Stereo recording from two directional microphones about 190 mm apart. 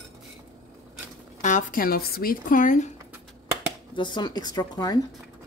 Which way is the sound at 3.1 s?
10° right (ahead or behind).